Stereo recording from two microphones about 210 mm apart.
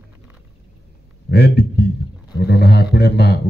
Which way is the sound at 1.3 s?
50° left (ahead or behind).